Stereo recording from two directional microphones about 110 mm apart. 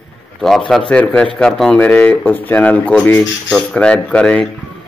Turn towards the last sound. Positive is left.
turn(degrees=10)  # may be behind; listen again after turning